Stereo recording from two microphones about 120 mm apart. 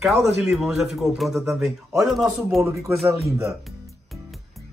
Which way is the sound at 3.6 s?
Centre (ahead or behind).